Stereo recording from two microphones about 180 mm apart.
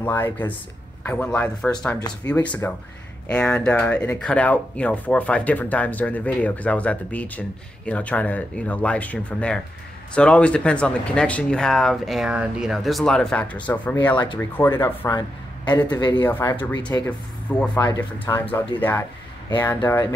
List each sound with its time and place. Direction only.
0.0 s speech: 10° left (ahead or behind)
13.9 s speech: 20° left (ahead or behind)
14.4 s speech: 15° left (ahead or behind)
16.3 s speech: 10° left (ahead or behind)